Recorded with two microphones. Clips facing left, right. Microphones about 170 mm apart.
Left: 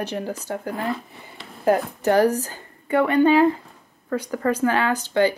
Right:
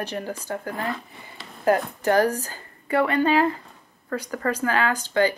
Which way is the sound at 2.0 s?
15° left (ahead or behind).